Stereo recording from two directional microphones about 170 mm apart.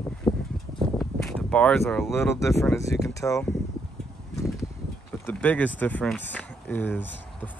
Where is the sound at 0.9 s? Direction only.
5° left (ahead or behind).